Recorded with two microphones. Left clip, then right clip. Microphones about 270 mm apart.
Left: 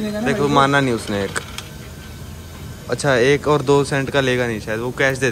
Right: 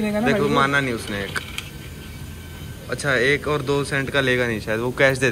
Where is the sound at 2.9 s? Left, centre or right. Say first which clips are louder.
Left 4 dB; centre.